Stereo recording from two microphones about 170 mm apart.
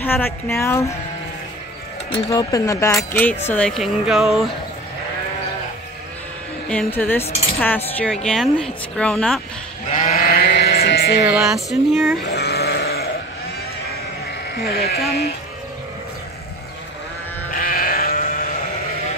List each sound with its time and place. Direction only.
0.0 s speech: 10° left (ahead or behind)
2.2 s speech: 20° left (ahead or behind); by 4.5 s centre (ahead or behind)
6.7 s speech: 5° left (ahead or behind)
9.8 s sheep: 50° left (ahead or behind); by 11.1 s 75° left (ahead or behind)
11.4 s speech: centre (ahead or behind)
12.3 s sheep: 75° left (ahead or behind)
14.5 s speech: 65° left (ahead or behind)
17.5 s sheep: 55° left (ahead or behind)